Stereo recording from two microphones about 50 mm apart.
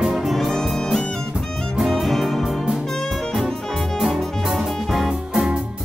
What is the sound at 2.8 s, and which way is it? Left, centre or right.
Saxophone, centre.